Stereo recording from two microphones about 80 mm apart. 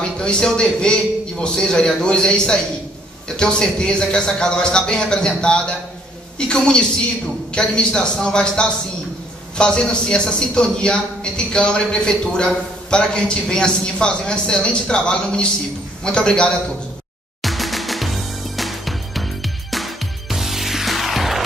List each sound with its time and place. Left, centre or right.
0.2 s a man's voice: centre
17.4 s music: centre